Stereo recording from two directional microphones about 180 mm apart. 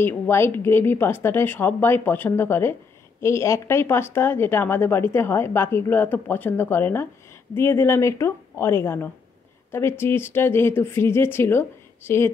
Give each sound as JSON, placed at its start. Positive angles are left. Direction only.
{"t": 0.0, "sound": "speech", "side_deg": 15}